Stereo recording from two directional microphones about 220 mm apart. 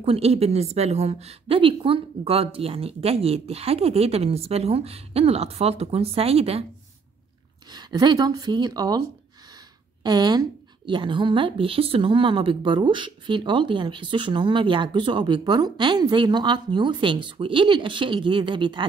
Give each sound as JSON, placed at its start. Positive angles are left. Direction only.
{"t": 0.0, "sound": "speech", "side_deg": -25}
{"t": 7.7, "sound": "speech", "side_deg": -20}
{"t": 10.0, "sound": "speech", "side_deg": -20}